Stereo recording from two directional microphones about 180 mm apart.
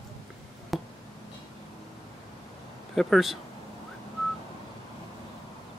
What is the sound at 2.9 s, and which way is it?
Speech, centre (ahead or behind).